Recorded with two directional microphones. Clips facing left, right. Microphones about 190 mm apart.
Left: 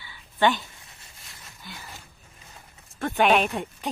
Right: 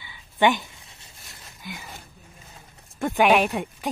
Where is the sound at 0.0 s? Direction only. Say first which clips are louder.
Right 2 dB; 15° right (ahead or behind).